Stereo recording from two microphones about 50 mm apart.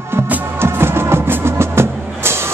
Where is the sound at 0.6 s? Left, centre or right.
Right.